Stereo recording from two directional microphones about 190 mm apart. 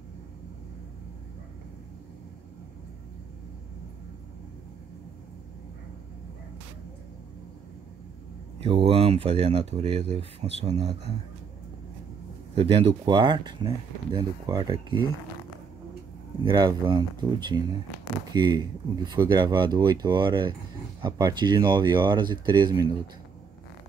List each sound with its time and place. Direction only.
8.5 s speech: 30° right (ahead or behind)
12.5 s speech: 30° right (ahead or behind)
16.4 s speech: 25° right (ahead or behind)